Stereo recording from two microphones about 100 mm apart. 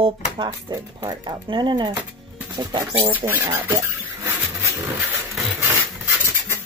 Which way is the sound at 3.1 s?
20° right (ahead or behind).